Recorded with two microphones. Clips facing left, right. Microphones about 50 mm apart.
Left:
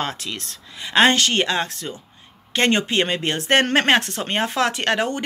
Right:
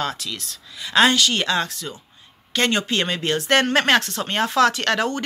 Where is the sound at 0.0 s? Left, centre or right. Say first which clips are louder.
Even; left.